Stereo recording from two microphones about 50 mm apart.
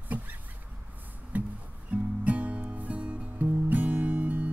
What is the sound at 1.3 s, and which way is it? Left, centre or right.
Music, right.